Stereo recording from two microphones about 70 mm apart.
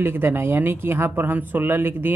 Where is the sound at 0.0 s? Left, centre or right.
Right.